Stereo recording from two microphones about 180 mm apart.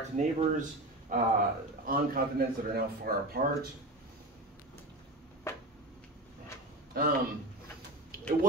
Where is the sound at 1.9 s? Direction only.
55° right (ahead or behind).